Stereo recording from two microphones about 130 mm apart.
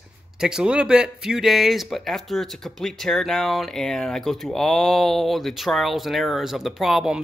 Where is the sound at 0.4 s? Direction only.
5° right (ahead or behind).